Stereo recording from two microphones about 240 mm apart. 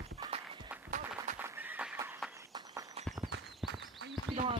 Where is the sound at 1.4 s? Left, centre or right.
Centre.